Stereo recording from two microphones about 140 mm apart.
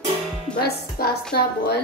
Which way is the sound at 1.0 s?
90° left.